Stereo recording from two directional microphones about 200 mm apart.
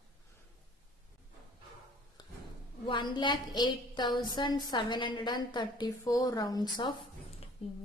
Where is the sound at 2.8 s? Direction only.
20° left (ahead or behind).